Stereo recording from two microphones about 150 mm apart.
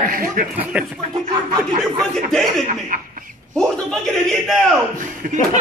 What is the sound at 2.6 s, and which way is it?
Speech, 60° right (ahead or behind).